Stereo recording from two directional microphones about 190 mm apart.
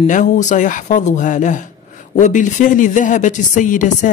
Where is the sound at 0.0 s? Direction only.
40° left (ahead or behind).